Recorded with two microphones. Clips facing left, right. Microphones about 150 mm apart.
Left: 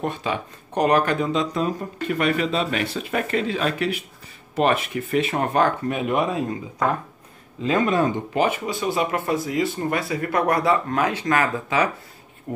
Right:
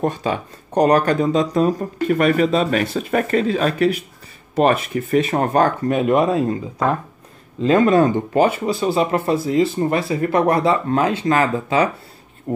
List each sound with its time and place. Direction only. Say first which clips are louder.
0.0 s speech: right 5 dB; 40° right (ahead or behind)
7.6 s speech: right 6 dB; 35° right (ahead or behind)
12.5 s speech: right 7 dB; 40° right (ahead or behind)